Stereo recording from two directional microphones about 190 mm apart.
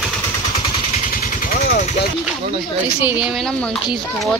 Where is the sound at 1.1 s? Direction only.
50° left (ahead or behind).